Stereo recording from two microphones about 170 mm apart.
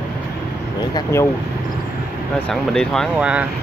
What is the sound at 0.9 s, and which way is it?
Speech, 15° left (ahead or behind).